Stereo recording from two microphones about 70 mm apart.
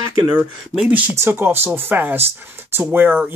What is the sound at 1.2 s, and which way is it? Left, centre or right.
Speech, right.